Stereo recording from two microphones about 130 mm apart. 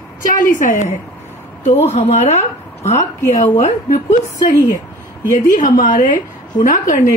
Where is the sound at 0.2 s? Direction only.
90° left.